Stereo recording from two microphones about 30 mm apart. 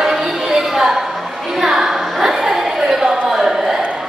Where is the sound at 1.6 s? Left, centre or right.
Centre.